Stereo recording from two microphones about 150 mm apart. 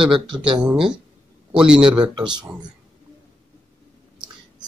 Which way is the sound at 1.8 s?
30° right (ahead or behind).